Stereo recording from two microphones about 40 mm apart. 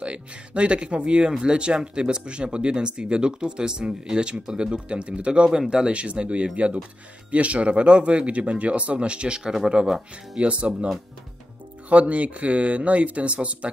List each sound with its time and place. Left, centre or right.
0.0 s speech: right
9.4 s speech: centre
10.4 s speech: right
11.9 s speech: right